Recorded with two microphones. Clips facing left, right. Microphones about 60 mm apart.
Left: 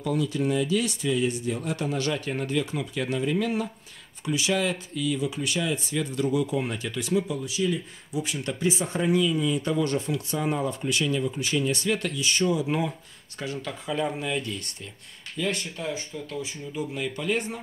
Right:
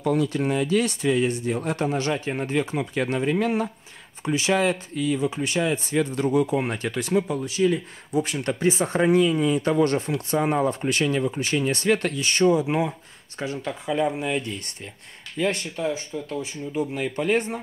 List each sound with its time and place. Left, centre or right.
0.0 s speech: right
2.5 s speech: right
12.6 s speech: right